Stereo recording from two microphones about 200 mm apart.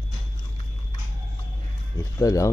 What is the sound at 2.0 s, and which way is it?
Speech, 15° left (ahead or behind).